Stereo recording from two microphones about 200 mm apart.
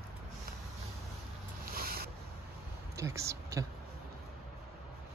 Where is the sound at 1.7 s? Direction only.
50° right (ahead or behind).